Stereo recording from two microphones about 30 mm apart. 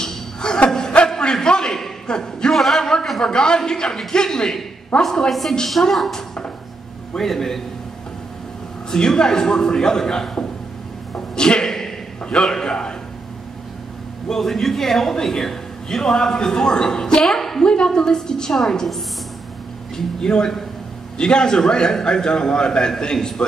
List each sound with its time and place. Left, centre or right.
0.0 s a sound: left
2.0 s speech: left
2.5 s a man's voice: centre
2.8 s a sound: left
3.2 s a man's voice: left
5.7 s a woman's voice: centre
7.2 s a man's voice: centre
8.9 s a man's voice: left
14.3 s a man's voice: centre; by 17.2 s left
17.2 s a woman's voice: centre
17.6 s a man's voice: left
20.2 s a man's voice: left